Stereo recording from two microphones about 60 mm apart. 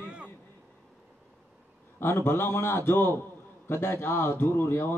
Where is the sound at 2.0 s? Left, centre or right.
Left.